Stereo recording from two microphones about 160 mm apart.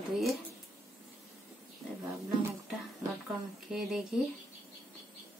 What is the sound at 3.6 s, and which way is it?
Speech, 5° right (ahead or behind).